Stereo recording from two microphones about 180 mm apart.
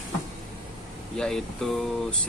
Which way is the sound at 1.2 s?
5° left (ahead or behind).